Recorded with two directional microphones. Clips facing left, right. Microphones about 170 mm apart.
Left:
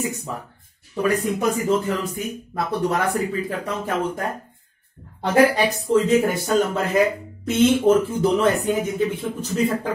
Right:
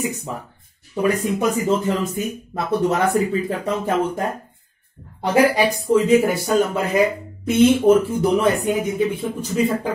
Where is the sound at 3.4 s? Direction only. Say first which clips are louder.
Right 4 dB; 30° right (ahead or behind).